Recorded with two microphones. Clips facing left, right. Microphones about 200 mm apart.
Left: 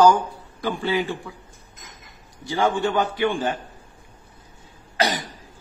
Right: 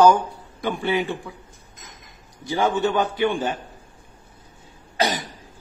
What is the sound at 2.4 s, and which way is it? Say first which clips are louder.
Speech: right 1 dB; 20° right (ahead or behind).